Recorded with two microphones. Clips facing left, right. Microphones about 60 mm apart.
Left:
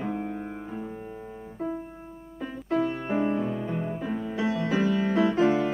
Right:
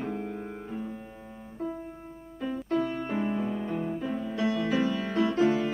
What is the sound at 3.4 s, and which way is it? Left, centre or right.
Music, centre.